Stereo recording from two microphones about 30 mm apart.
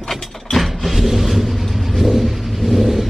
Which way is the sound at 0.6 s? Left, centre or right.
Centre.